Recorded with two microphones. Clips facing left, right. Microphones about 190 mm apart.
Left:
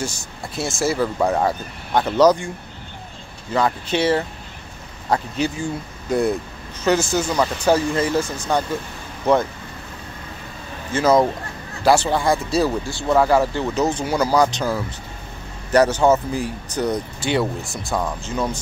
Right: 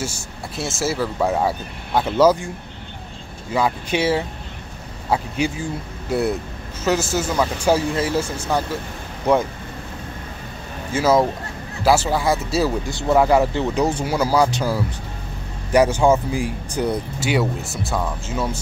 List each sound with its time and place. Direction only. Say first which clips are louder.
0.0 s speech: even; 10° right (ahead or behind)
3.5 s speech: even; 10° right (ahead or behind)
10.9 s speech: left 1 dB; 5° right (ahead or behind)
12.8 s speech: right 1 dB; 20° right (ahead or behind)
13.8 s speech: even; 10° right (ahead or behind)